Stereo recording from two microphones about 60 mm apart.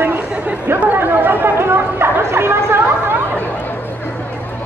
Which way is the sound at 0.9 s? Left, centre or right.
Right.